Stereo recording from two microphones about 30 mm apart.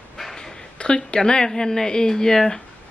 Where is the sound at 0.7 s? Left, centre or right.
Left.